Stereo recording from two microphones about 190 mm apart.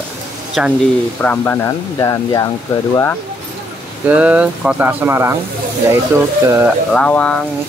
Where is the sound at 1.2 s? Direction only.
10° left (ahead or behind).